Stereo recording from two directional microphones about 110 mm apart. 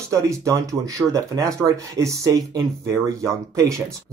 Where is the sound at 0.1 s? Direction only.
30° right (ahead or behind).